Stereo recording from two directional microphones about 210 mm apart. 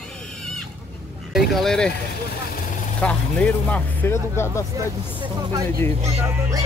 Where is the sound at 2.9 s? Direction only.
5° left (ahead or behind).